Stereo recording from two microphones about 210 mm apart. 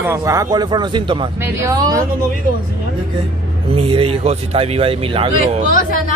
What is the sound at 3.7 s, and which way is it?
Speech, 25° right (ahead or behind).